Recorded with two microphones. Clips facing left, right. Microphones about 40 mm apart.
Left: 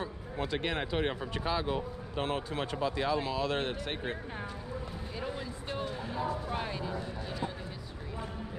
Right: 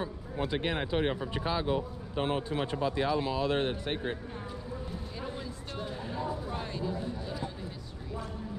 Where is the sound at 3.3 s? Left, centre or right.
Right.